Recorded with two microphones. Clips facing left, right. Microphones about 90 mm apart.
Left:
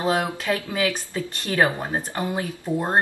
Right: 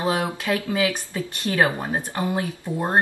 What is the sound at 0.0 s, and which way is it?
Speech, 15° right (ahead or behind).